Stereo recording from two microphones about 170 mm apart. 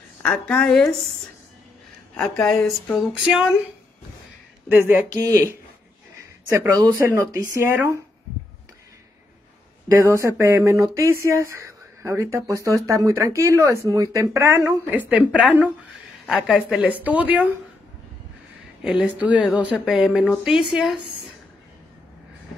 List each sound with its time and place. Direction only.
0.2 s speech: 5° left (ahead or behind)
2.1 s speech: 5° left (ahead or behind)
4.6 s speech: 10° right (ahead or behind)
7.2 s speech: 15° right (ahead or behind)
9.9 s speech: 15° right (ahead or behind)
16.3 s speech: 5° right (ahead or behind)
18.8 s speech: 5° right (ahead or behind)